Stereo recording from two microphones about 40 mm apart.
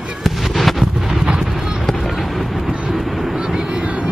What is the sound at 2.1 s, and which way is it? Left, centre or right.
Vehicle, centre.